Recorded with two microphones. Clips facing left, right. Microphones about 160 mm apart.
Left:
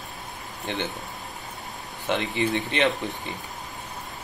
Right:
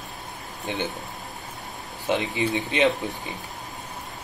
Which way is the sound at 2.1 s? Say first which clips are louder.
Right 1 dB; 15° right (ahead or behind).